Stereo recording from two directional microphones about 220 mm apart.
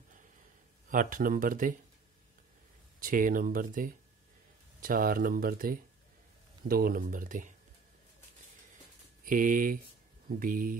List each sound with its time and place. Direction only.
0.8 s speech: 40° right (ahead or behind)
3.0 s speech: 40° right (ahead or behind)
9.2 s speech: 40° right (ahead or behind)